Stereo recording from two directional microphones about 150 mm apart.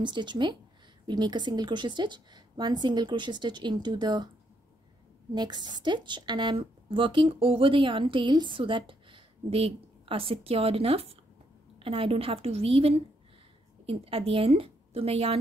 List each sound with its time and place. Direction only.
0.0 s a woman's voice: 30° right (ahead or behind)
5.3 s a woman's voice: 30° right (ahead or behind)